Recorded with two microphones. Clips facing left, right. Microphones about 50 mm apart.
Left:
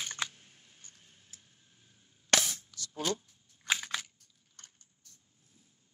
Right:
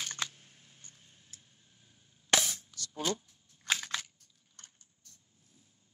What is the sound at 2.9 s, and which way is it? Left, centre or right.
Speech, centre.